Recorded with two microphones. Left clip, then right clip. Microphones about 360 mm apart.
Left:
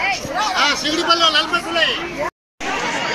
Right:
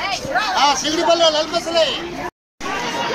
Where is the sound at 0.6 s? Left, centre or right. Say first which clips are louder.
Right 1 dB; centre.